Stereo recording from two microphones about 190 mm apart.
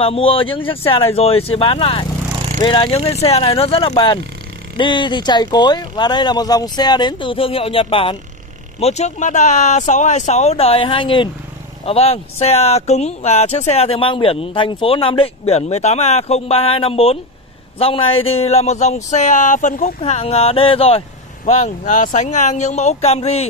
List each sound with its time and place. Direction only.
0.0 s speech: 30° left (ahead or behind)